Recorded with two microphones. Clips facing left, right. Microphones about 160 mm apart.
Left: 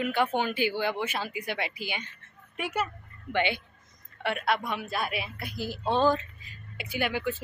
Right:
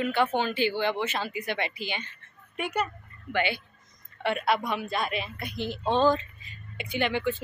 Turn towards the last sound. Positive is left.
turn(degrees=10)  # may be behind; listen again after turning